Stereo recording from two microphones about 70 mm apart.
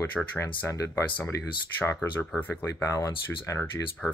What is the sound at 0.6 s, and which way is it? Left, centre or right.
Speech, left.